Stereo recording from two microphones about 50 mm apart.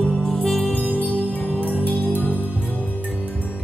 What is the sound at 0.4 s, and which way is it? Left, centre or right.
Music, centre.